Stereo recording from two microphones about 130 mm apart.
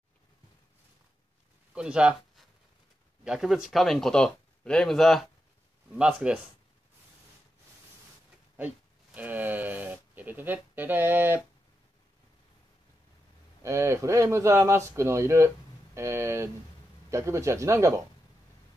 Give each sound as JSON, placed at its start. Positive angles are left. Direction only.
{"t": 1.8, "sound": "speech", "side_deg": -10}
{"t": 8.5, "sound": "a sound", "side_deg": -10}
{"t": 13.6, "sound": "speech", "side_deg": -25}